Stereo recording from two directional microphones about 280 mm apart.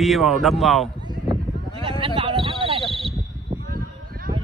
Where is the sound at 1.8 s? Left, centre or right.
Centre.